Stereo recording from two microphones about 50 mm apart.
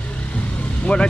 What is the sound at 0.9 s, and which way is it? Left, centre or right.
Speech, left.